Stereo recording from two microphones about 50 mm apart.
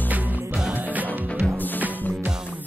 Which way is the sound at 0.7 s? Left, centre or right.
Right.